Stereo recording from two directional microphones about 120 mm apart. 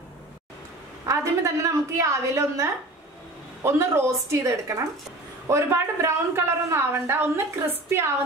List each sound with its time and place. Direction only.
1.0 s a woman's voice: 25° right (ahead or behind)